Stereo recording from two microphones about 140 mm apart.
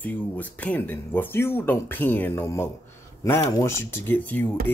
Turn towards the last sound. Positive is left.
turn(degrees=10)  # may be behind; listen again after turning